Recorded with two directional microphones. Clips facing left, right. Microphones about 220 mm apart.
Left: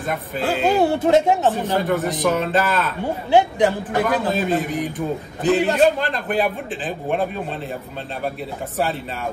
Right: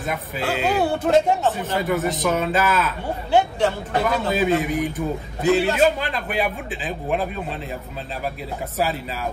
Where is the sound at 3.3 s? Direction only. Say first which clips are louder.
Left 3 dB; 15° left (ahead or behind).